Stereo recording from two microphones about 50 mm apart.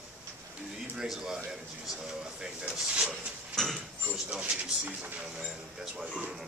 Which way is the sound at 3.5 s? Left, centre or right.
Centre.